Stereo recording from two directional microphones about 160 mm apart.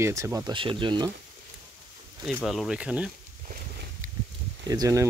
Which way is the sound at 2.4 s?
Centre (ahead or behind).